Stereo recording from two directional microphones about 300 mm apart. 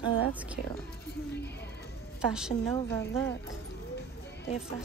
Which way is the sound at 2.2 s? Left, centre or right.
Centre.